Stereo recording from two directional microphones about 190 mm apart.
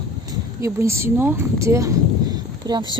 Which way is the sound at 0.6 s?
15° right (ahead or behind).